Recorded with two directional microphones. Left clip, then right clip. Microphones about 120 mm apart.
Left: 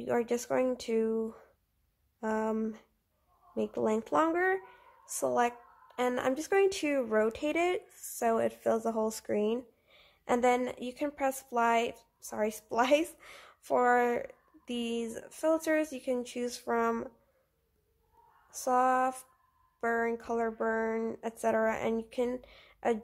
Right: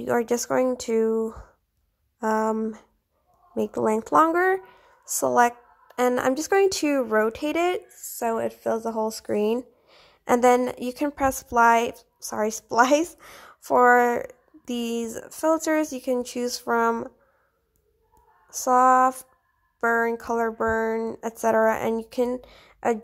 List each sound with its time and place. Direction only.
0.0 s a woman's voice: 40° right (ahead or behind)
3.5 s a woman's voice: 40° right (ahead or behind); by 9.2 s 10° right (ahead or behind)
9.4 s a woman's voice: 40° right (ahead or behind)
18.5 s a woman's voice: 35° right (ahead or behind)
20.9 s speech: 20° right (ahead or behind)
21.2 s a woman's voice: 35° right (ahead or behind)